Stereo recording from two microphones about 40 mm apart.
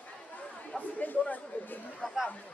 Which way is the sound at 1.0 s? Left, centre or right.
Left.